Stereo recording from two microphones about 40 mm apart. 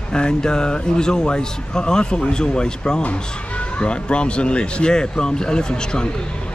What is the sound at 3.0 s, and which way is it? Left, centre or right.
A man's voice, left.